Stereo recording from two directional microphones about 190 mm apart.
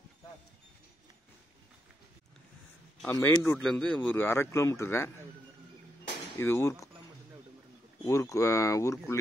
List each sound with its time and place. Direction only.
3.0 s a man's voice: 10° left (ahead or behind)
6.3 s a man's voice: 15° left (ahead or behind)
8.0 s a man's voice: 15° left (ahead or behind)